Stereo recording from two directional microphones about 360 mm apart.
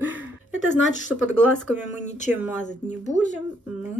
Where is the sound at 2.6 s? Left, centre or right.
Centre.